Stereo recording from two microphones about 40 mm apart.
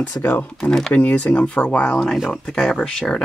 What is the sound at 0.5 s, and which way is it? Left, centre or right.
Speech, centre.